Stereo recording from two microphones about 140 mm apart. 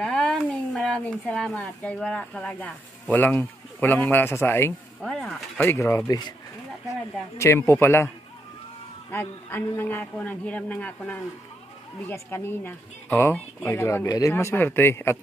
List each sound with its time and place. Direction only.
0.0 s a man's voice: 5° left (ahead or behind); by 6.3 s 25° left (ahead or behind)
7.3 s a man's voice: 20° left (ahead or behind)
9.1 s speech: 15° left (ahead or behind)